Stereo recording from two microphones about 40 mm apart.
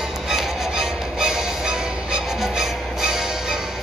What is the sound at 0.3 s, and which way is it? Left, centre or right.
Music, centre.